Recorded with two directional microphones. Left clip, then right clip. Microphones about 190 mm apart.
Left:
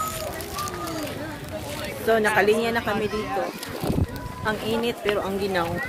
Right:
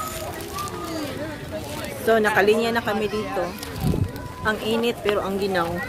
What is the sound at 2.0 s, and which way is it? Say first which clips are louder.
Speech: right 2 dB; 10° right (ahead or behind).